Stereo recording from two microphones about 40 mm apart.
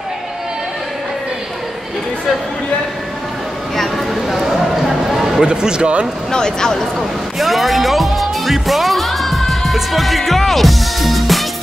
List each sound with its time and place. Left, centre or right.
3.7 s a sound: centre
4.5 s basketball bounce: centre
5.4 s speech: centre
6.3 s speech: centre
7.0 s music: centre